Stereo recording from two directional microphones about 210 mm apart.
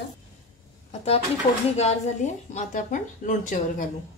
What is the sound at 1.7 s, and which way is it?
Speech, 30° left (ahead or behind).